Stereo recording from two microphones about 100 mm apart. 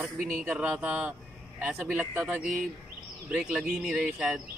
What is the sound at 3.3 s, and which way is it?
Speech, 5° right (ahead or behind).